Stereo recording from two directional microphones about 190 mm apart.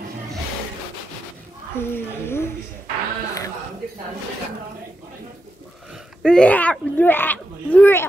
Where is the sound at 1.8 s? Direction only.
10° left (ahead or behind).